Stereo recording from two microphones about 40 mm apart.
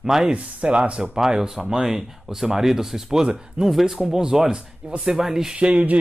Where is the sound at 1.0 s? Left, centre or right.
Centre.